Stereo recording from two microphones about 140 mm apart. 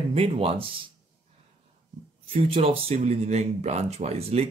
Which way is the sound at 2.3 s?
45° right (ahead or behind).